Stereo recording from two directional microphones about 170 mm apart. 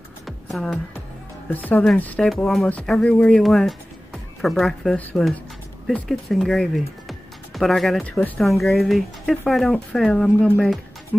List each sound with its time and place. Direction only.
0.5 s speech: centre (ahead or behind)